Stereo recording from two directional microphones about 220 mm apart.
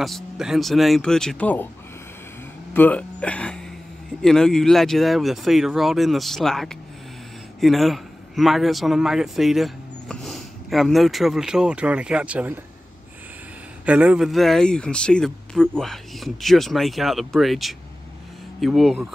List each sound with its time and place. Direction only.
0.0 s speech: centre (ahead or behind)
2.7 s a man's voice: 5° left (ahead or behind)
13.8 s speech: 5° right (ahead or behind)